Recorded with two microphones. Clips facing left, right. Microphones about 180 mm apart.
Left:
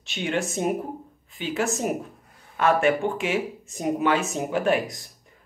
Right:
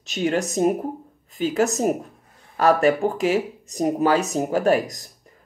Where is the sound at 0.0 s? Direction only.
40° right (ahead or behind).